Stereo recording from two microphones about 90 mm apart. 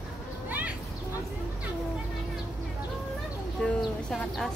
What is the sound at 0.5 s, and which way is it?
Children playing, 20° right (ahead or behind).